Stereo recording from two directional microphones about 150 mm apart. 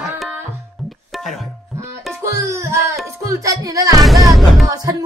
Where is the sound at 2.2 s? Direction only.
20° right (ahead or behind).